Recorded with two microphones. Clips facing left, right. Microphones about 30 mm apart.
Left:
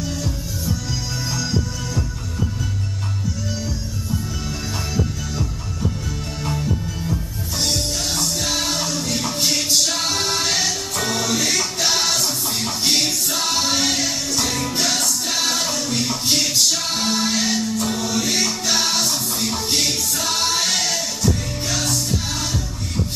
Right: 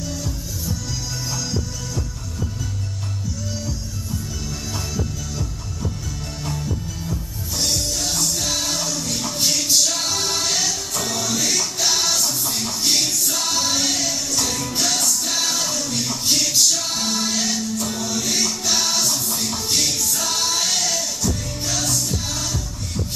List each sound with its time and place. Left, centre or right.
1.3 s music: left
4.9 s music: left